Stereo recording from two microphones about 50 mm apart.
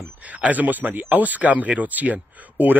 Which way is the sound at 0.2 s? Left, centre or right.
Right.